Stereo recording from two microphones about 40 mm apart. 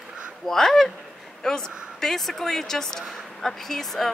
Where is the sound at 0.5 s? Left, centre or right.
Centre.